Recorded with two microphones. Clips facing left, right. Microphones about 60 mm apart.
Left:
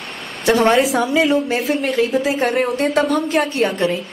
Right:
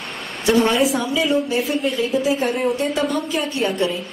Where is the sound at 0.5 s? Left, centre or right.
Left.